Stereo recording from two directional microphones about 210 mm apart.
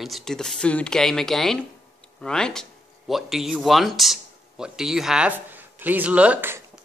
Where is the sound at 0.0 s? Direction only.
Centre (ahead or behind).